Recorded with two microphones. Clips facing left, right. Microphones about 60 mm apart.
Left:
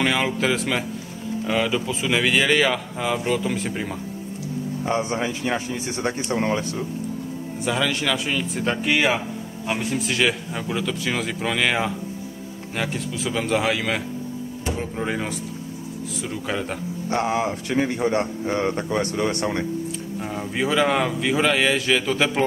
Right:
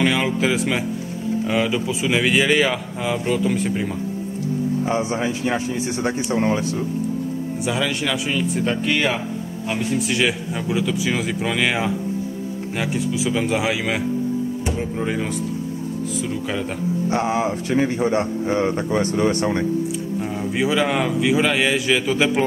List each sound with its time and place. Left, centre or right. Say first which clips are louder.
0.0 s speech: right 2 dB; centre
4.8 s speech: right 2 dB; centre
7.6 s speech: left 1 dB; centre
13.2 s speech: left 1 dB; centre
17.1 s speech: even; centre